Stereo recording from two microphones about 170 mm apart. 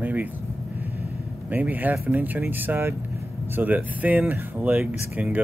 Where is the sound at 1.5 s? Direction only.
10° right (ahead or behind).